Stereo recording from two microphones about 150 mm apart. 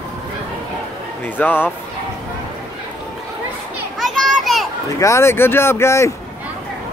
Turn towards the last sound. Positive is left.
turn(degrees=20)  # may be behind; listen again after turning